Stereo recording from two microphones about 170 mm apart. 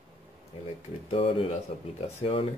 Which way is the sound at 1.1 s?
35° left (ahead or behind).